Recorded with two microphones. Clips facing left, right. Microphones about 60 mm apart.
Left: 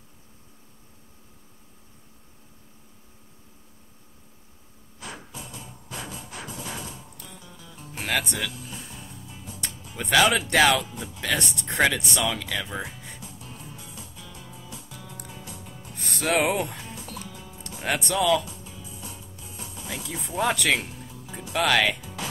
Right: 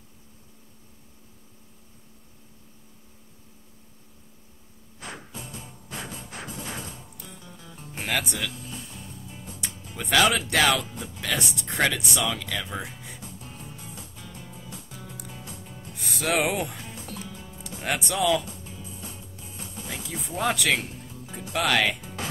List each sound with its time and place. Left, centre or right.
5.0 s music: right
7.9 s speech: centre
9.9 s speech: centre
13.7 s music: right
15.9 s music: centre
17.2 s music: right
17.8 s speech: centre
18.5 s music: right
20.1 s speech: centre
22.0 s music: right